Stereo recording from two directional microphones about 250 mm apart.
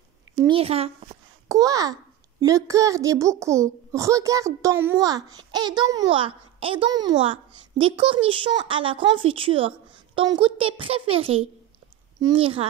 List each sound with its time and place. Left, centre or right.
0.4 s a woman's voice: right